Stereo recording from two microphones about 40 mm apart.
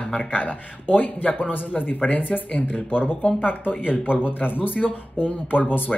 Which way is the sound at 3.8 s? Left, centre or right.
Left.